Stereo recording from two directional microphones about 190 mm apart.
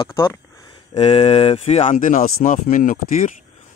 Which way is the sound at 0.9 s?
30° left (ahead or behind).